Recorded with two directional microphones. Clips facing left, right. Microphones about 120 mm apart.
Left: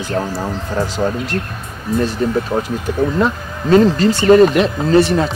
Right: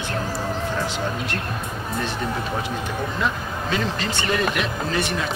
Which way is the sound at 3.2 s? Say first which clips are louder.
Left 7 dB; 40° left (ahead or behind).